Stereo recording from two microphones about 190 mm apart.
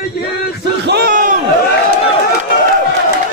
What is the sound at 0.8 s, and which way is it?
Crowd, 60° right (ahead or behind).